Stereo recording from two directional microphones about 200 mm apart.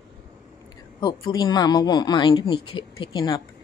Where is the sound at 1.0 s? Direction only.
20° left (ahead or behind).